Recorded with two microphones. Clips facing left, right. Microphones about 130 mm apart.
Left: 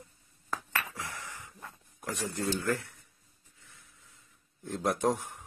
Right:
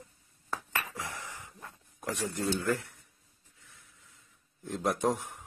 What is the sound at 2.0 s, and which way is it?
Speech, 20° right (ahead or behind).